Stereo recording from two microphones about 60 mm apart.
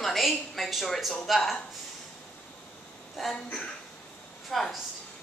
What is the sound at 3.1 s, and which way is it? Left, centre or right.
A woman's voice, centre.